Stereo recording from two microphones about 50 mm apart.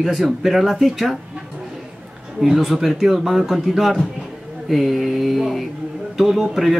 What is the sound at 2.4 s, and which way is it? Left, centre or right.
Speech, centre.